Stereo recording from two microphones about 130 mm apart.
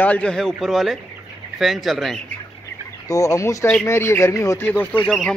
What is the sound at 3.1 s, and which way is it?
Speech, 25° left (ahead or behind).